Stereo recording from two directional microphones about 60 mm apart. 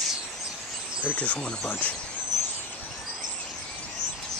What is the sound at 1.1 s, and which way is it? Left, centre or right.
Speech, left.